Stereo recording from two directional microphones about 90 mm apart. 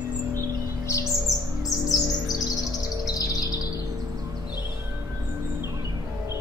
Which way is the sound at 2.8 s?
40° left (ahead or behind).